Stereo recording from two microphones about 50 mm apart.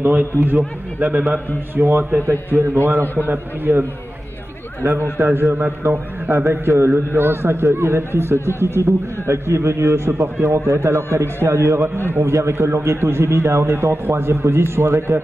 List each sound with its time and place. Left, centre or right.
0.0 s a man's voice: right
2.5 s a man's voice: right
3.3 s a man's voice: right
5.1 s a man's voice: right